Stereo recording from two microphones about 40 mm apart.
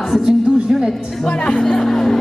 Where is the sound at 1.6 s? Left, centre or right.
Centre.